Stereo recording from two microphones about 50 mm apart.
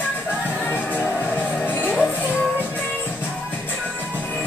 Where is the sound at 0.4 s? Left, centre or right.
Left.